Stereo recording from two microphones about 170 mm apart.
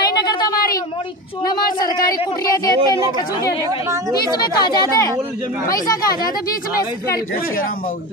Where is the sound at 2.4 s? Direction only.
20° left (ahead or behind).